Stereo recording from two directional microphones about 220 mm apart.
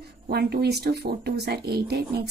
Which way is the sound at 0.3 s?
45° right (ahead or behind).